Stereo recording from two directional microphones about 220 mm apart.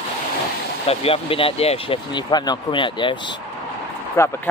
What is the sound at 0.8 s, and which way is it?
Speech, 25° left (ahead or behind).